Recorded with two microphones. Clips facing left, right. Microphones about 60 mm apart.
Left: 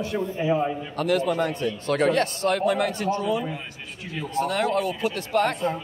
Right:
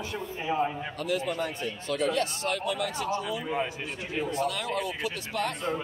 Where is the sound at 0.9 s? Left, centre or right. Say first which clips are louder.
Left 8 dB; left.